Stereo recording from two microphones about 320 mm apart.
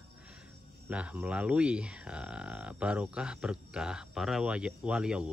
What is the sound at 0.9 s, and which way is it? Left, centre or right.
Speech, centre.